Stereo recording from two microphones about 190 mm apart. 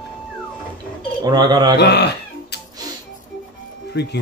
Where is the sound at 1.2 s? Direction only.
20° right (ahead or behind).